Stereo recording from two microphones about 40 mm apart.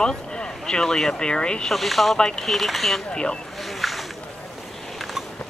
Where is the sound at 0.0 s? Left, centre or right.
Centre.